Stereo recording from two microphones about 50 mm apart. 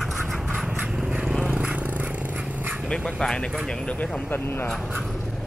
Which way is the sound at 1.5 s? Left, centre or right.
Right.